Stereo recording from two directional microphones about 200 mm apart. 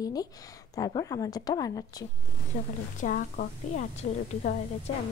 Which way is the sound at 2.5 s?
45° left (ahead or behind).